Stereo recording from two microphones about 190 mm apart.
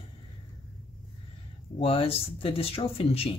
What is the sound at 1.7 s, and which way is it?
Speech, 30° left (ahead or behind).